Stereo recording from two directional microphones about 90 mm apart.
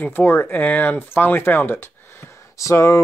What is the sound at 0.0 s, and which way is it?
Speech, 20° left (ahead or behind).